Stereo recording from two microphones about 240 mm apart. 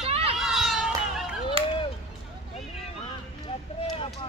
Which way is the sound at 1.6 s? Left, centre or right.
Right.